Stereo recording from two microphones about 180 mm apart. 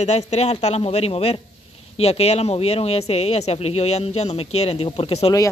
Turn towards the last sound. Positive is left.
turn(degrees=30)  # may be behind; listen again after turning